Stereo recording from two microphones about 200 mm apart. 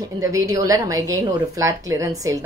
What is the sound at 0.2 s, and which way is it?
A woman's voice, 15° right (ahead or behind).